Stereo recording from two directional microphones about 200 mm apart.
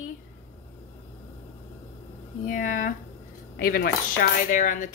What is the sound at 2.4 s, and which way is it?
Speech, 40° left (ahead or behind).